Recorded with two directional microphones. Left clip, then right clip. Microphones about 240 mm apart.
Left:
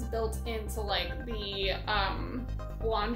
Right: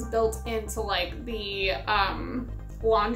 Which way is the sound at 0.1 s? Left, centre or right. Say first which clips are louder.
Right 8 dB; centre.